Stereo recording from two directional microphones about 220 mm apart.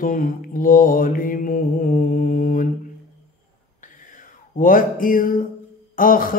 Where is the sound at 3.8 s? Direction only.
35° left (ahead or behind).